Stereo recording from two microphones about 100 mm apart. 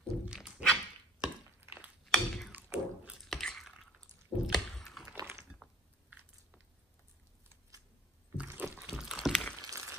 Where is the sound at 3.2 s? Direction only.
Centre (ahead or behind).